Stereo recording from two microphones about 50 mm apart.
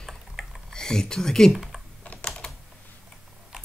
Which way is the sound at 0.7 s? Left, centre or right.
Centre.